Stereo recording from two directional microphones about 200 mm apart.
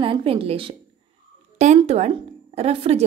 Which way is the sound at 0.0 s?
25° right (ahead or behind).